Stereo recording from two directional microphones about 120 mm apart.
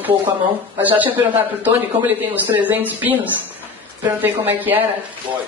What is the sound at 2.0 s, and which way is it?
Speech, 40° right (ahead or behind).